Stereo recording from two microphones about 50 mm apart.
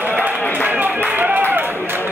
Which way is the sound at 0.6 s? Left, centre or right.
Right.